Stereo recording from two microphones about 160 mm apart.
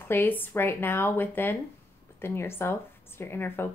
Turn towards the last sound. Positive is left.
turn(degrees=15)  # may be behind; listen again after turning